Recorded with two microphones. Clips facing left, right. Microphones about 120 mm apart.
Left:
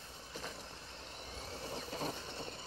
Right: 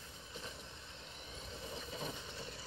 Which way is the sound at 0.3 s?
85° left.